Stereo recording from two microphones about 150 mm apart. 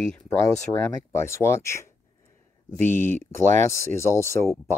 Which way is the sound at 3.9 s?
20° left (ahead or behind).